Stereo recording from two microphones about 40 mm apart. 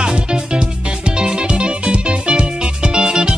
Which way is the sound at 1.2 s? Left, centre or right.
Right.